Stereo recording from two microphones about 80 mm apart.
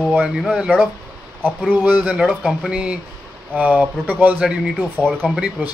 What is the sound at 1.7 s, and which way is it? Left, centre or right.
Speech, right.